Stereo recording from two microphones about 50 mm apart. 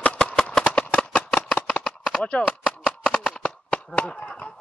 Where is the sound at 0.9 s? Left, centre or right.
Centre.